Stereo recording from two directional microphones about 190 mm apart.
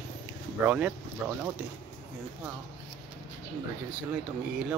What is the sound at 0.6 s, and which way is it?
Speech, 5° right (ahead or behind).